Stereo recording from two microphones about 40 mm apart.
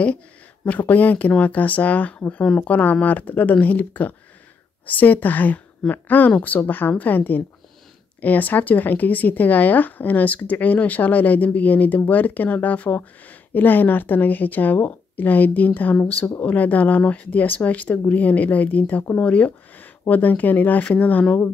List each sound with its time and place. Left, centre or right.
0.7 s speech: left